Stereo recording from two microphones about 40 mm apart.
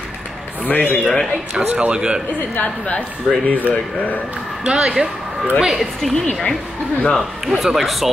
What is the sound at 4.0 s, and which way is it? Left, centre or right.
Speech, left.